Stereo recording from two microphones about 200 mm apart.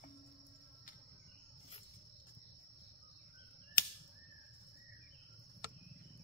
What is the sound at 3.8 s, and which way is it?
Cap gun, 50° left (ahead or behind).